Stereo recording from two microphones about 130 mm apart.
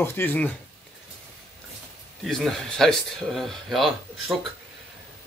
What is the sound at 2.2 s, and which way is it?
A man's voice, centre (ahead or behind).